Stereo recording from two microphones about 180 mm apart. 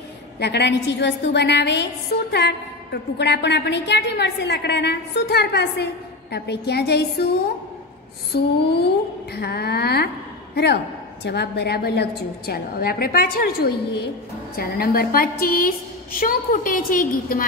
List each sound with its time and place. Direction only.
0.4 s a woman's voice: 70° left (ahead or behind)
8.4 s a woman's voice: 65° left (ahead or behind)